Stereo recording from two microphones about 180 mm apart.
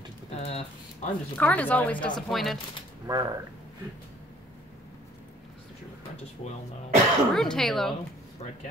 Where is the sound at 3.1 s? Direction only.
20° right (ahead or behind).